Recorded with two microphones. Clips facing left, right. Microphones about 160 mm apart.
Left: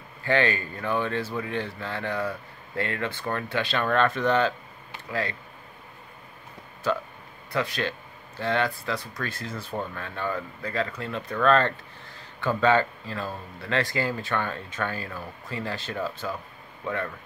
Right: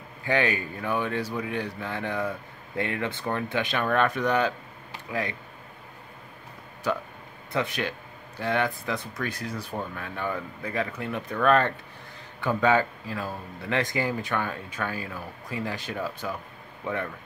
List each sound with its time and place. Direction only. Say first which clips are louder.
0.2 s speech: left 1 dB; 10° right (ahead or behind)
7.5 s speech: even; 20° right (ahead or behind)